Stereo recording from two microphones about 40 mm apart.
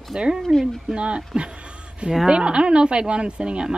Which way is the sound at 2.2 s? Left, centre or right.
Right.